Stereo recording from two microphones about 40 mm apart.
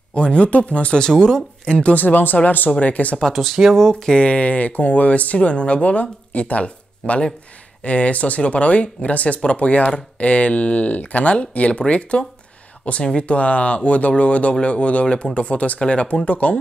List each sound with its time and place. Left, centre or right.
0.1 s speech: left
1.0 s speech: centre
1.7 s speech: left
2.0 s speech: left
3.3 s speech: centre
4.2 s speech: left